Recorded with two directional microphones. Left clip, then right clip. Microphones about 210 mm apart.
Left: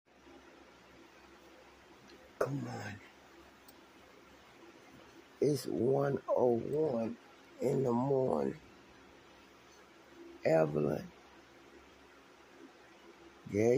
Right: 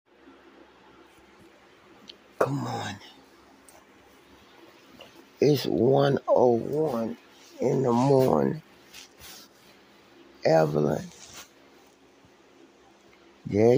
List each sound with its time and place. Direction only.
2.3 s speech: 25° right (ahead or behind)
5.4 s speech: 25° right (ahead or behind)
10.4 s speech: 25° right (ahead or behind)
13.5 s speech: 25° right (ahead or behind)